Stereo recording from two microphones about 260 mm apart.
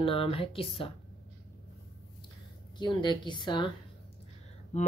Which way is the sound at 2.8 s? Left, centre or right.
Centre.